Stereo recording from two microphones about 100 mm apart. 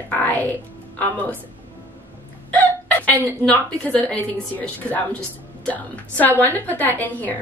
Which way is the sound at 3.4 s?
15° left (ahead or behind).